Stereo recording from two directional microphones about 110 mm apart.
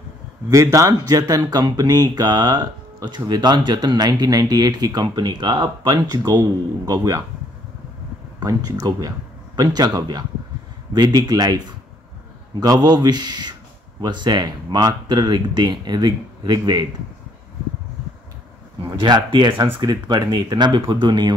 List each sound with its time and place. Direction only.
0.5 s speech: 30° right (ahead or behind)
8.4 s speech: 35° right (ahead or behind)
18.9 s speech: 45° right (ahead or behind)